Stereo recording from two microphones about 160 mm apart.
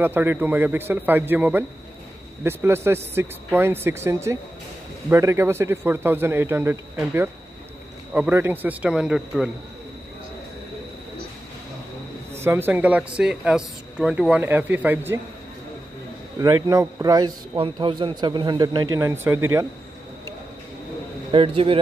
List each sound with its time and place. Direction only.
0.0 s speech: 10° right (ahead or behind)
12.4 s speech: 15° right (ahead or behind)
16.3 s a man's voice: 25° right (ahead or behind)
21.3 s a man's voice: 35° right (ahead or behind)